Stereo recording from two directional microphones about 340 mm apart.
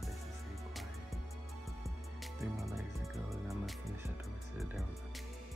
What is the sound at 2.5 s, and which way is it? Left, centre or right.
Music, centre.